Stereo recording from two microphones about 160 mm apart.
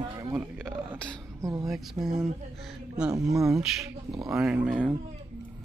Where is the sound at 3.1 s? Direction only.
20° right (ahead or behind).